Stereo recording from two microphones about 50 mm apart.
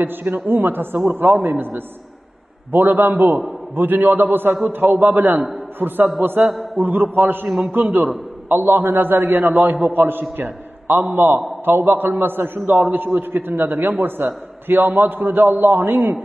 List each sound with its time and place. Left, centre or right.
0.0 s a man's voice: right
6.4 s a man's voice: centre
6.8 s a man's voice: right